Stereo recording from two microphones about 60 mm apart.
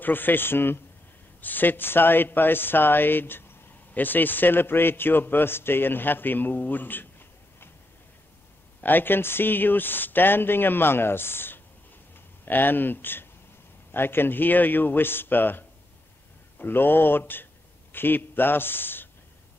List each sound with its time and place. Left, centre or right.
0.0 s a man's voice: left
8.8 s a man's voice: left